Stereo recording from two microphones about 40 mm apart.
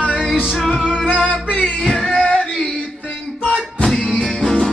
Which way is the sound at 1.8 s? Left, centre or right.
Centre.